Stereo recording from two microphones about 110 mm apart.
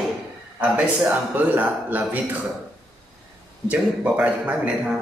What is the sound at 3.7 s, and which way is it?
Speech, 10° right (ahead or behind).